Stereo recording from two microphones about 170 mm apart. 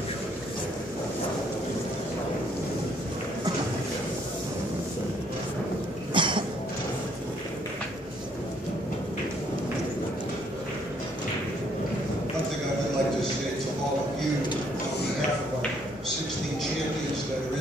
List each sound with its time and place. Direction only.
6.1 s cough: 30° right (ahead or behind)